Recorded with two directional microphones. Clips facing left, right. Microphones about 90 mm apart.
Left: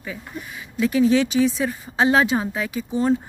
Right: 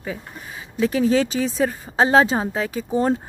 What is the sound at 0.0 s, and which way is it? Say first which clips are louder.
Speech: right 1 dB; 35° right (ahead or behind).